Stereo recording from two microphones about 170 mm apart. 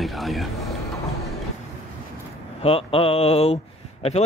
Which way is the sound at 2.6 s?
35° left (ahead or behind).